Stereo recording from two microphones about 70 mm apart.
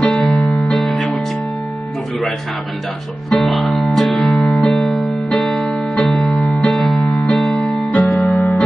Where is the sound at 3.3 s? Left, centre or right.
Centre.